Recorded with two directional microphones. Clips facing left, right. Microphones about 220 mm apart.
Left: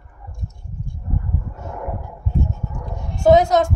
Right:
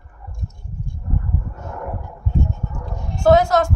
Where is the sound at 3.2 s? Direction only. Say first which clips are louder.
Left 1 dB; 20° left (ahead or behind).